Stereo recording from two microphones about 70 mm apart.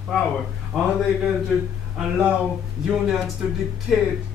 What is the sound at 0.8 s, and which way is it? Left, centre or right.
A man's voice, centre.